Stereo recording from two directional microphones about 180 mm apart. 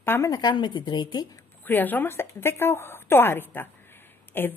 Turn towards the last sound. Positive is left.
turn(degrees=10)  # may be behind; listen again after turning